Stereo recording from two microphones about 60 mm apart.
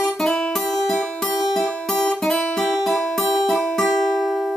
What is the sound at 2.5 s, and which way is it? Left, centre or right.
Music, centre.